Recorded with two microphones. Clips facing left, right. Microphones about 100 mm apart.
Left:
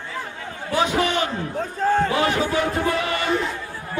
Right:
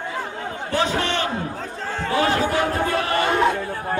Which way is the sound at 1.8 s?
50° left (ahead or behind).